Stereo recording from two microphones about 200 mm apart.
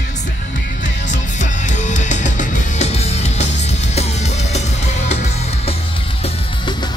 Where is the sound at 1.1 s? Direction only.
35° left (ahead or behind).